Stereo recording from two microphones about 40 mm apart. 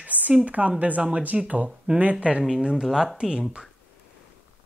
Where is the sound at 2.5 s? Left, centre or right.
Centre.